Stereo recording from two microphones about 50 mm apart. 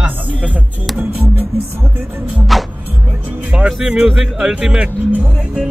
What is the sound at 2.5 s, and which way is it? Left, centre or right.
Speech, centre.